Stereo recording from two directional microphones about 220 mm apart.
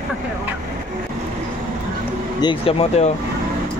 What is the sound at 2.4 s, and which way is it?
Speech, 25° left (ahead or behind).